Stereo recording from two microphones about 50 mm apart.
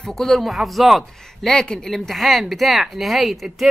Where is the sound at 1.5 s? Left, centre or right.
Centre.